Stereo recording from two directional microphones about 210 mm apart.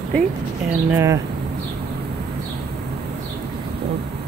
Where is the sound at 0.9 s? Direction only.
15° right (ahead or behind).